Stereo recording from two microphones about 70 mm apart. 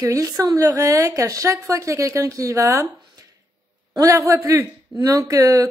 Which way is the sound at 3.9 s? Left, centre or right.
Right.